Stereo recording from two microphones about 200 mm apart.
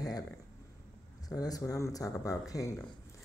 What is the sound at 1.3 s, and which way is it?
Speech, 20° left (ahead or behind).